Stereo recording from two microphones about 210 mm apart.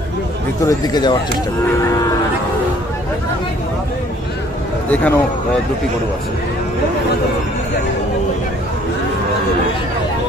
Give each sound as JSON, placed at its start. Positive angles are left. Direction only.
{"t": 0.6, "sound": "speech", "side_deg": 15}
{"t": 4.9, "sound": "speech", "side_deg": 5}